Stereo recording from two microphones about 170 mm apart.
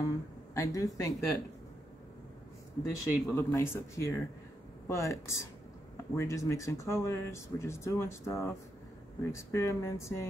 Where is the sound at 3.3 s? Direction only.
15° left (ahead or behind).